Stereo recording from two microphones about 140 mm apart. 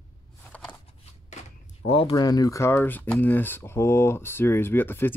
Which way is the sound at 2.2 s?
25° left (ahead or behind).